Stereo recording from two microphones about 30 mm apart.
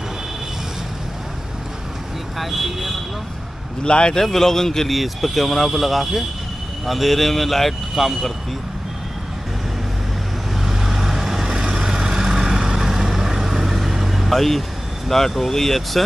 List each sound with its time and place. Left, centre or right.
2.3 s speech: centre
3.8 s speech: left
4.2 s speech: centre
4.8 s speech: centre
10.6 s vehicle: centre
14.3 s speech: centre